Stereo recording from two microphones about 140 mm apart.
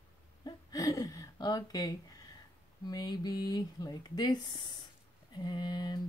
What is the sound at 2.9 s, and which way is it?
Speech, 30° left (ahead or behind).